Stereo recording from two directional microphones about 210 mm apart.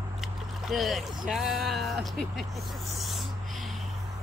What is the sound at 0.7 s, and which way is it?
Speech, centre (ahead or behind).